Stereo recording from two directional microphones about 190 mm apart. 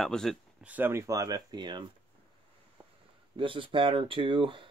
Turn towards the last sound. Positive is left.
turn(degrees=-25)  # may be behind; listen again after turning